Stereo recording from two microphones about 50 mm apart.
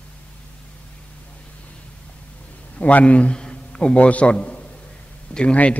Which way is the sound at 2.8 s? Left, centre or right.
Left.